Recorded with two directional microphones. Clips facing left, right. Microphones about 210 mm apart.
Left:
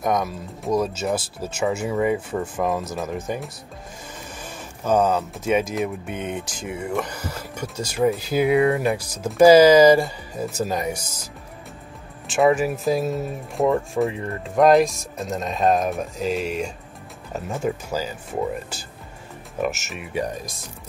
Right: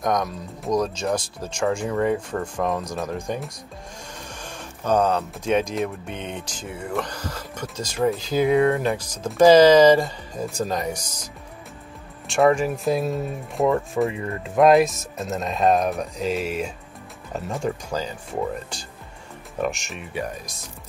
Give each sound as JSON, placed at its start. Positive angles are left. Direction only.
{"t": 0.0, "sound": "speech", "side_deg": 5}
{"t": 4.8, "sound": "speech", "side_deg": 5}
{"t": 12.3, "sound": "speech", "side_deg": 5}